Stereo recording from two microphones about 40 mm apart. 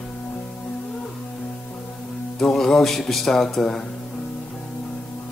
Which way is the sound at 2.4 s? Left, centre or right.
Centre.